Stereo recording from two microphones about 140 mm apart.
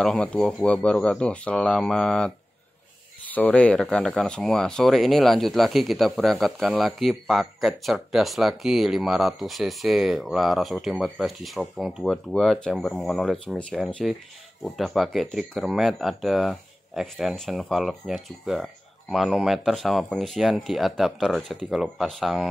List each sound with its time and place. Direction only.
0.0 s speech: 5° left (ahead or behind)